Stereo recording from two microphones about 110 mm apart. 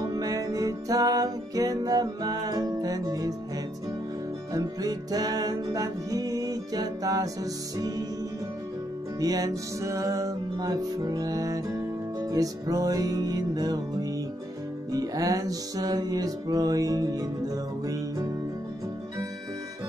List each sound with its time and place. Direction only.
0.0 s music: 35° right (ahead or behind)
4.6 s music: 35° right (ahead or behind)
9.2 s music: 35° right (ahead or behind)
14.9 s music: 35° right (ahead or behind)